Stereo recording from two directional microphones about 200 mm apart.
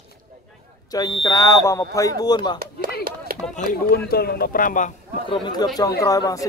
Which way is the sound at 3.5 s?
45° left (ahead or behind).